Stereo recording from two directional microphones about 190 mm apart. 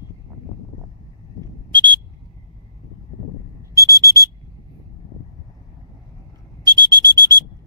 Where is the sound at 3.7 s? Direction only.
15° right (ahead or behind).